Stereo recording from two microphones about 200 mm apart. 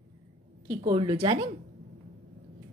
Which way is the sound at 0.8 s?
25° right (ahead or behind).